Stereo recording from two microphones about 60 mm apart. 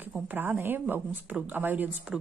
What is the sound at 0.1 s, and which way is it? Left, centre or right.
Speech, right.